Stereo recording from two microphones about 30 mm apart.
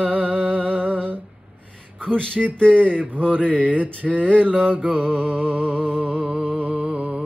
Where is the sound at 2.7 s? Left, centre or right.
Right.